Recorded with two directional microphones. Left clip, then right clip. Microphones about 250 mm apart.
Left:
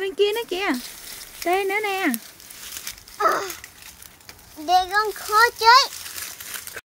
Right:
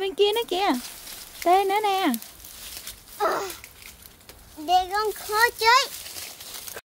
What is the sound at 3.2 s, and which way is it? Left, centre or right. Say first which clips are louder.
Speech: left 4 dB; centre.